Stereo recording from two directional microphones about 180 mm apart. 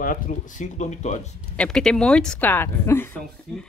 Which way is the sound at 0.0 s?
45° left (ahead or behind).